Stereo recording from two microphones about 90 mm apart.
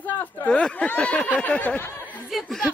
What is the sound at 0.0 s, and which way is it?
Speech, 15° left (ahead or behind).